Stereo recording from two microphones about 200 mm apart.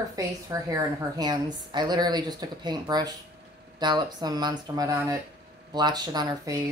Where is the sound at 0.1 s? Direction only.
15° right (ahead or behind).